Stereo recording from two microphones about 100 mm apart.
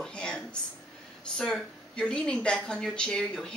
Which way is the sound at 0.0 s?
10° left (ahead or behind).